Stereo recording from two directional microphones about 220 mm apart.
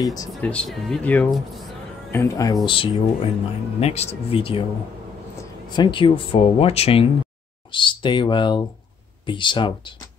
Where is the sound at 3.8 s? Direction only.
30° left (ahead or behind).